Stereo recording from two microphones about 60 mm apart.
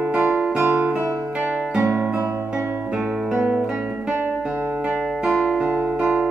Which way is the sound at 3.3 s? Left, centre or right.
Centre.